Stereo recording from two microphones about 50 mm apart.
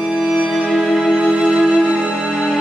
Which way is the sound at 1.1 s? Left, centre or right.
Centre.